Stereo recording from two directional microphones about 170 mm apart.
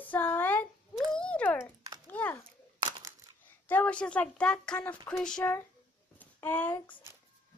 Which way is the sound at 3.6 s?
10° left (ahead or behind).